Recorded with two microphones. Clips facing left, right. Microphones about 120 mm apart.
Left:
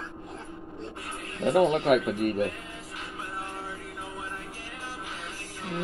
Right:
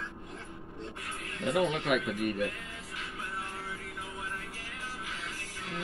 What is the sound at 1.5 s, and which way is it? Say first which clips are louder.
Speech: left 7 dB; 50° left (ahead or behind).